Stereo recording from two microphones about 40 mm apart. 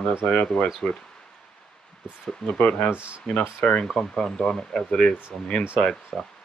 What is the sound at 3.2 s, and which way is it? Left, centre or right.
Speech, left.